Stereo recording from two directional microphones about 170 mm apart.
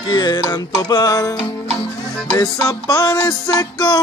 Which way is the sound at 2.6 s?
20° left (ahead or behind).